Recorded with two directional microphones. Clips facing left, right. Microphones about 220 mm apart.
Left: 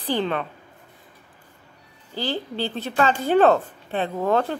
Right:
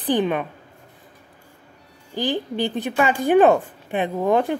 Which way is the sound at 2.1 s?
15° right (ahead or behind).